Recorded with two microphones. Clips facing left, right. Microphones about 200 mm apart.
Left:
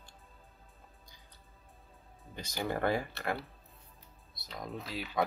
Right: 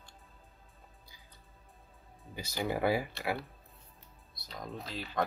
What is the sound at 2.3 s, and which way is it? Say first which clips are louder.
Speech: right 1 dB; 10° right (ahead or behind).